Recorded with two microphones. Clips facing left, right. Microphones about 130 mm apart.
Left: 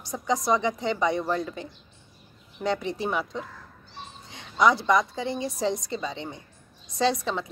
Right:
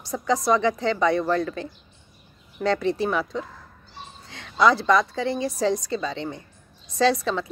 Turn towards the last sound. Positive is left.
turn(degrees=20)  # may be behind; listen again after turning